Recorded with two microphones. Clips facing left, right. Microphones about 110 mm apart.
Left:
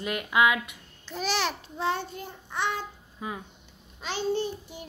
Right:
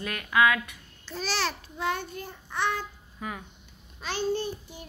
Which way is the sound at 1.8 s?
25° left (ahead or behind).